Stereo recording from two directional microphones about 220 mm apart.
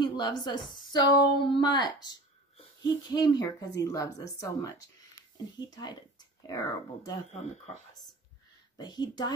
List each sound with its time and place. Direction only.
0.0 s a woman's voice: 20° left (ahead or behind)
8.7 s a woman's voice: 20° left (ahead or behind)